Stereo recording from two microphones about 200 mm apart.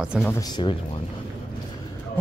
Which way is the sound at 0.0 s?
5° right (ahead or behind).